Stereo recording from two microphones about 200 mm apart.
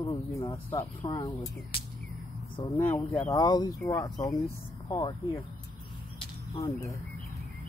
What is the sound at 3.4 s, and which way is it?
Speech, 20° left (ahead or behind).